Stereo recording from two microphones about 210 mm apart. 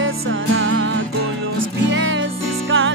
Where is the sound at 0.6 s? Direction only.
65° right (ahead or behind).